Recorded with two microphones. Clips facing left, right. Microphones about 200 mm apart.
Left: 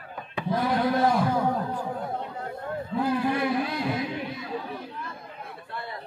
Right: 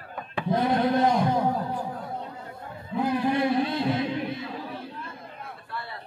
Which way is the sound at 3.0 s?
20° right (ahead or behind).